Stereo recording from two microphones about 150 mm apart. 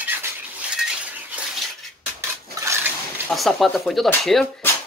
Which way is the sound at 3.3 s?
Centre (ahead or behind).